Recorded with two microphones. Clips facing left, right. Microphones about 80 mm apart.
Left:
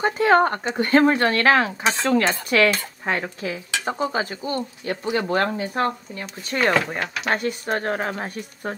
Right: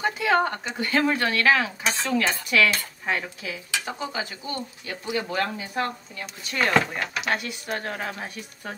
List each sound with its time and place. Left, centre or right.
0.0 s speech: left
1.9 s stir: left
2.2 s speech: left